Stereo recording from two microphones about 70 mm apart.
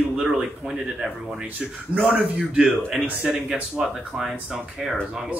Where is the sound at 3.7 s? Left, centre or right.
Centre.